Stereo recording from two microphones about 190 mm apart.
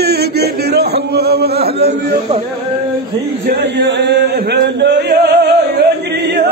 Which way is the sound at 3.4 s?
60° right (ahead or behind).